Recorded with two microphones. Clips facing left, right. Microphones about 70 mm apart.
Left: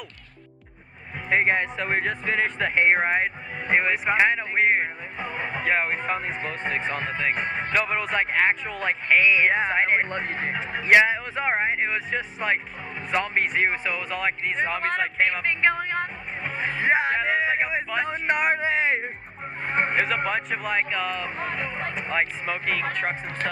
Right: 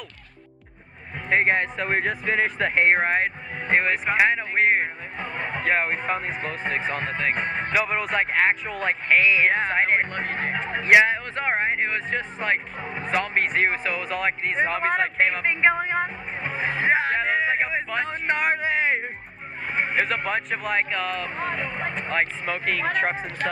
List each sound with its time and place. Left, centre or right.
1.3 s speech: centre
16.4 s music: centre
16.9 s music: centre
17.3 s a sound: centre
18.1 s speech: centre
19.7 s a sound: centre
20.2 s speech: centre